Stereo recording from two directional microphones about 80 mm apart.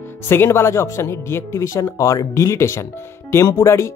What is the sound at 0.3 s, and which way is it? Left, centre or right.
Speech, left.